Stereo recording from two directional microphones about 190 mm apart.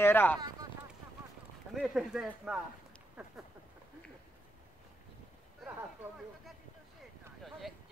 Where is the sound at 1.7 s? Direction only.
5° right (ahead or behind).